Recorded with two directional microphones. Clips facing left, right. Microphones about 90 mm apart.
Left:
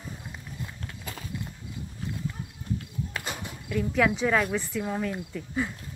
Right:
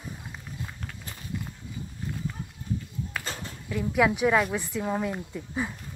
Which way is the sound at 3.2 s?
15° left (ahead or behind).